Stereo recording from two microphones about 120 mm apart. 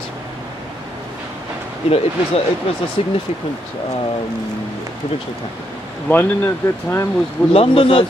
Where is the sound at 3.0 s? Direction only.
55° left (ahead or behind).